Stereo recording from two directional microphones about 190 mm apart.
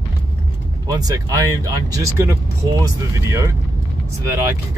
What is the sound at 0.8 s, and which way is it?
Speech, 20° right (ahead or behind).